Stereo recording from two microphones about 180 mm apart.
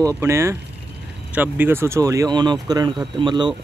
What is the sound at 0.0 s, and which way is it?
Speech, 15° right (ahead or behind).